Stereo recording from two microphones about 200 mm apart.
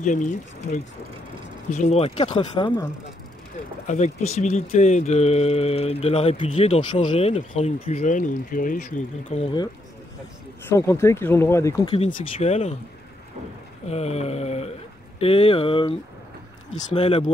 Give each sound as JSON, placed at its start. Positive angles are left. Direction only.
{"t": 0.0, "sound": "speech", "side_deg": 40}
{"t": 3.8, "sound": "speech", "side_deg": 35}
{"t": 10.7, "sound": "speech", "side_deg": 15}
{"t": 12.2, "sound": "speech", "side_deg": 30}
{"t": 13.8, "sound": "speech", "side_deg": 30}